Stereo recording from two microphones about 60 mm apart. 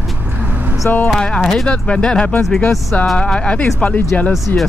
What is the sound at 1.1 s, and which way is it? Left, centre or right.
Speech, centre.